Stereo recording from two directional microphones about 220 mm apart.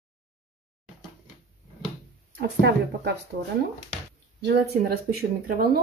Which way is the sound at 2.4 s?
50° right (ahead or behind).